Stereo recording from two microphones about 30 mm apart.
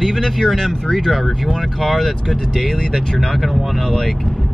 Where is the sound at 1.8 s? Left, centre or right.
Centre.